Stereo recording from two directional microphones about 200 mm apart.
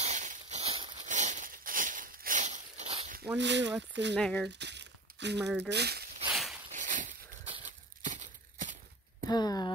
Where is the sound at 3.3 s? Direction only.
60° right (ahead or behind).